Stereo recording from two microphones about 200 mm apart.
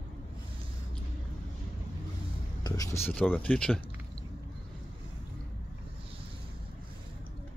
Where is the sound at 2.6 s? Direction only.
15° left (ahead or behind).